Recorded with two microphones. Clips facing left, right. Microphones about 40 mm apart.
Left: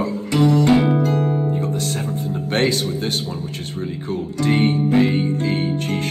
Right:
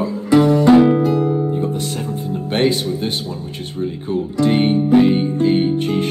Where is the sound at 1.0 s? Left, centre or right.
Left.